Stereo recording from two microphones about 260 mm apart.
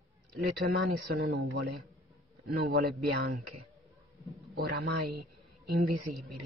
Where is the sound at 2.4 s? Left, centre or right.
Right.